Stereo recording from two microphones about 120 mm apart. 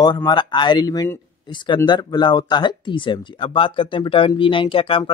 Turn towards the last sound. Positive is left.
turn(degrees=50)  # may be behind; listen again after turning